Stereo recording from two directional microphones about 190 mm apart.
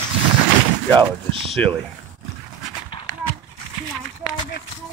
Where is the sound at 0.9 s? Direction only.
30° right (ahead or behind).